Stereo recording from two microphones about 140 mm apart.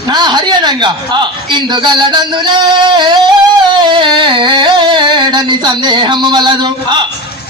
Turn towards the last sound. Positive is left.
turn(degrees=-30)  # may be behind; listen again after turning